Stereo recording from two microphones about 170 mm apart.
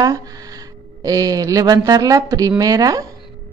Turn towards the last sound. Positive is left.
turn(degrees=-20)  # may be behind; listen again after turning